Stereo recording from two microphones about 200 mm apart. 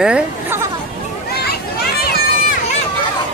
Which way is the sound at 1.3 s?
50° left (ahead or behind).